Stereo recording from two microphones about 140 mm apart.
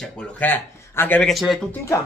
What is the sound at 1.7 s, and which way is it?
Speech, 20° left (ahead or behind).